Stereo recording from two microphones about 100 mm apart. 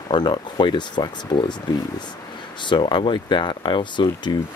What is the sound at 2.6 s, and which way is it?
Speech, 50° left (ahead or behind).